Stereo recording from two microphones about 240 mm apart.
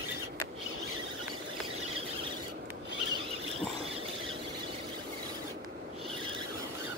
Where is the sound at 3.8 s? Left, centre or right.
Right.